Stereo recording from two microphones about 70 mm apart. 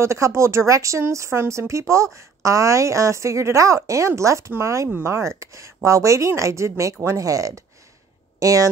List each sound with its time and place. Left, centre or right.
0.0 s a woman's voice: right